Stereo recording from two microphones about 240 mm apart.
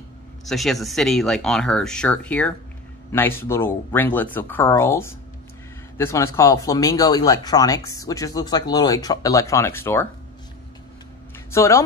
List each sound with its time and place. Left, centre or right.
0.5 s speech: centre
11.5 s speech: centre